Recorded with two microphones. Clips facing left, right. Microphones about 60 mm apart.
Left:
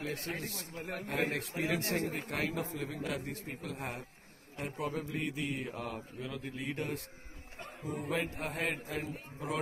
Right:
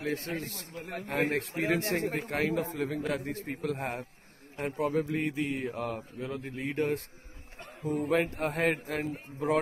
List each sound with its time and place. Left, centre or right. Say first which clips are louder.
0.0 s mantra: right 5 dB; right
0.9 s a man's voice: right 5 dB; right
4.6 s mantra: right 8 dB; right
5.5 s a man's voice: right 5 dB; right
8.0 s a man's voice: right 7 dB; right